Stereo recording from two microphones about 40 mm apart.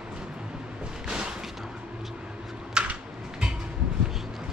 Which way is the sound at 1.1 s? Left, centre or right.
Centre.